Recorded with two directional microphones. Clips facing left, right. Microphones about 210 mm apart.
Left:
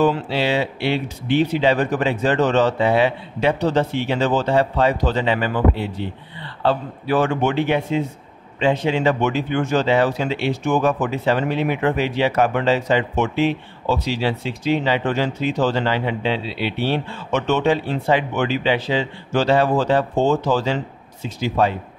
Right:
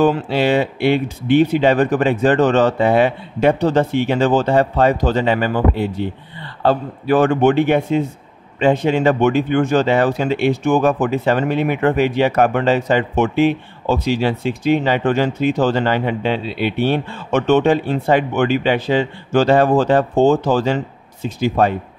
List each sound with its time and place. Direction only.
0.0 s speech: 50° right (ahead or behind)